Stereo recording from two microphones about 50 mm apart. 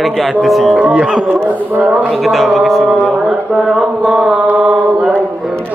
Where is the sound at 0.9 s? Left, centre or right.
Centre.